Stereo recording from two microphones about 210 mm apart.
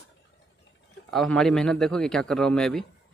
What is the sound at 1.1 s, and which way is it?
Speech, centre (ahead or behind).